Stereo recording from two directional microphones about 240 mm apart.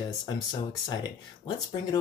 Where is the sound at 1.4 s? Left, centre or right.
Centre.